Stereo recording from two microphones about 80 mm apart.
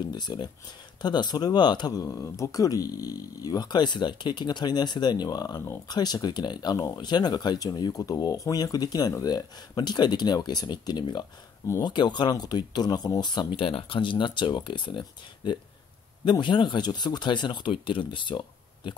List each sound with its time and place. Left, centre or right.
0.1 s speech: left